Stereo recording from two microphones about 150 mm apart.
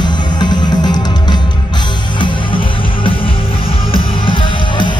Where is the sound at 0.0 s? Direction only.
30° left (ahead or behind).